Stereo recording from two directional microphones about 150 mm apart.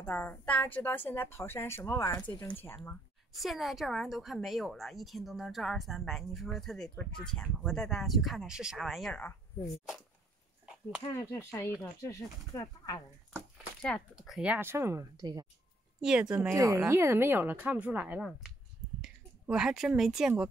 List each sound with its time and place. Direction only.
0.0 s a woman's voice: 15° left (ahead or behind)
3.3 s speech: centre (ahead or behind)
11.1 s a woman's voice: 15° left (ahead or behind)
13.7 s speech: 5° left (ahead or behind); by 15.4 s 25° right (ahead or behind)
16.0 s speech: 5° right (ahead or behind)
16.3 s speech: 20° right (ahead or behind); by 20.4 s 5° right (ahead or behind)